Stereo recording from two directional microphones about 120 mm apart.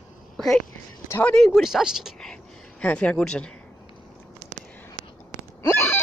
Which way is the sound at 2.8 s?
10° left (ahead or behind).